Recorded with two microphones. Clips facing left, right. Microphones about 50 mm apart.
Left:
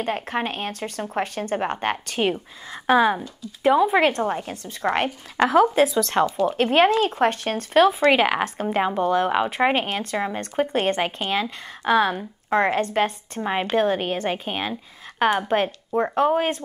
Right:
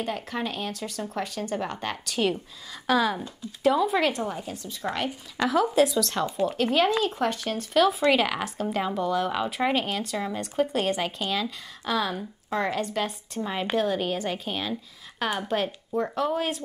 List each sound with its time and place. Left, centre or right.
0.0 s speech: left
4.1 s a woman's voice: left